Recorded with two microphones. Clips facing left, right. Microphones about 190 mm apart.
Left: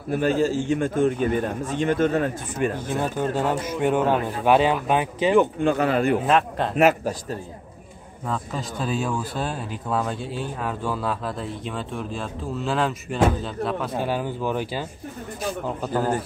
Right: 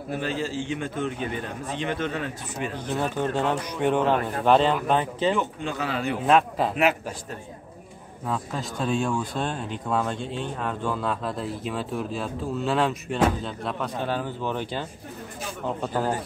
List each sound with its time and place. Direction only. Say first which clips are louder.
0.1 s a man's voice: left 8 dB; 45° left (ahead or behind)
3.0 s speech: left 1 dB; 10° left (ahead or behind)
5.3 s speech: left 8 dB; 55° left (ahead or behind)
6.2 s speech: even; centre (ahead or behind)
6.8 s a man's voice: left 7 dB; 45° left (ahead or behind)
8.3 s speech: left 1 dB; centre (ahead or behind)